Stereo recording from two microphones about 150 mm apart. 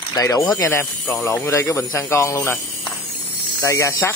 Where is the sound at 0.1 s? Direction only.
25° left (ahead or behind).